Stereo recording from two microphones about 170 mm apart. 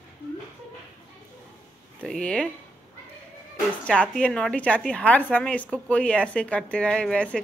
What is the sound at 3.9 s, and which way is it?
A woman's voice, 5° left (ahead or behind).